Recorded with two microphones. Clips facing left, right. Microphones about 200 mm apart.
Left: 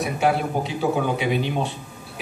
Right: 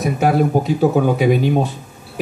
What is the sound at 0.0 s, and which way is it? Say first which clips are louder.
Speech: right 6 dB; 45° right (ahead or behind).